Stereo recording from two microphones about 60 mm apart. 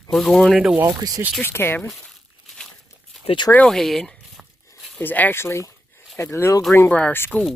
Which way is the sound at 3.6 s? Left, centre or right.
Centre.